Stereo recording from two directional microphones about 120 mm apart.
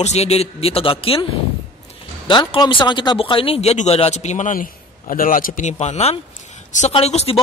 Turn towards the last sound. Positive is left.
turn(degrees=60)  # may be behind; listen again after turning